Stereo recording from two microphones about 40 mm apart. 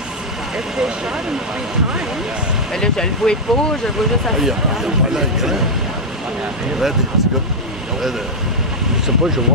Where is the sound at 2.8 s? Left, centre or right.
Centre.